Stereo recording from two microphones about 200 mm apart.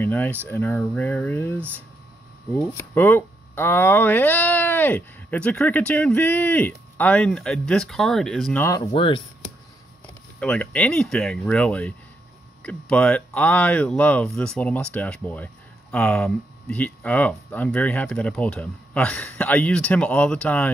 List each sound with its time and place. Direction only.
0.0 s speech: 10° left (ahead or behind)
2.9 s speech: 10° left (ahead or behind)
8.9 s speech: 25° left (ahead or behind)
10.4 s speech: 5° left (ahead or behind)